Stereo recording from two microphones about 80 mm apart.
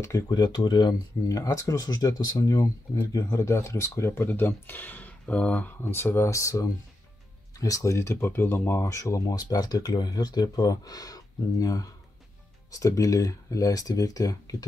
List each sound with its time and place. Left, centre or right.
0.3 s speech: left
1.3 s speech: left
9.2 s speech: left